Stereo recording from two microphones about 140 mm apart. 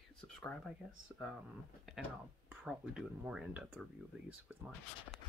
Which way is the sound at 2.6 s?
5° right (ahead or behind).